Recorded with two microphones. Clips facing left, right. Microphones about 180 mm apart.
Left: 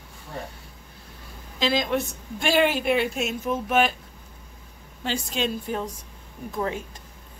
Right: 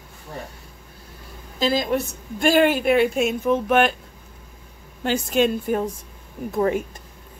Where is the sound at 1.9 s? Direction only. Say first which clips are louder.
Right 3 dB; 45° right (ahead or behind).